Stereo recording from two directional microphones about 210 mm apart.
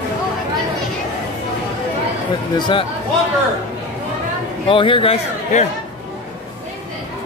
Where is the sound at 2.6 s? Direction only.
25° left (ahead or behind).